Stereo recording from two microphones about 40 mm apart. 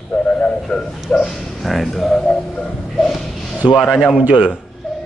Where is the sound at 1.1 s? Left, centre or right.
Left.